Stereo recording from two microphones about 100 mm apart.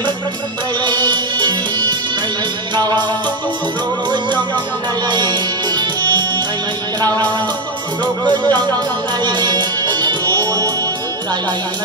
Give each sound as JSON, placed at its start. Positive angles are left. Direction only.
{"t": 0.8, "sound": "music", "side_deg": -45}
{"t": 2.7, "sound": "music", "side_deg": -45}
{"t": 4.1, "sound": "music", "side_deg": -50}
{"t": 8.0, "sound": "music", "side_deg": -45}